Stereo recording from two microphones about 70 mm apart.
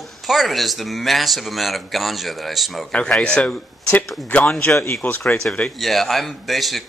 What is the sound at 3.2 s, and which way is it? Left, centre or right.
Speech, centre.